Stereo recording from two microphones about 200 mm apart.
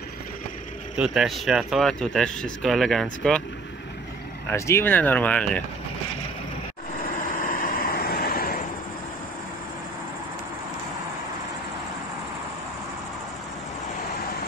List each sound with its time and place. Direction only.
0.9 s speech: 5° right (ahead or behind)
4.5 s speech: 15° left (ahead or behind)
7.2 s vehicle: 45° left (ahead or behind)